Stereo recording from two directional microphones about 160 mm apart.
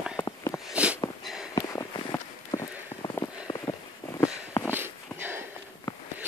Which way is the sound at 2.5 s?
20° left (ahead or behind).